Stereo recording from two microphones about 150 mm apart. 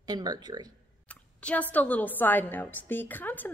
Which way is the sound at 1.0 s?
10° left (ahead or behind).